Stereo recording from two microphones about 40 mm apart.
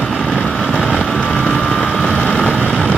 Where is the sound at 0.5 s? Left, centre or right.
Left.